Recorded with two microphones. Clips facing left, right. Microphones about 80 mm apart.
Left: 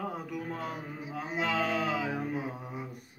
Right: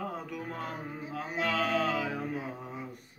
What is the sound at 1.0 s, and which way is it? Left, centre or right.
Mantra, centre.